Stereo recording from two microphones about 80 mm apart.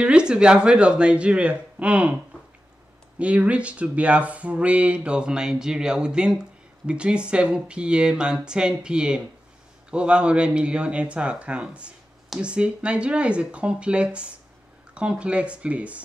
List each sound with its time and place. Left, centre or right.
0.0 s speech: centre
3.2 s speech: centre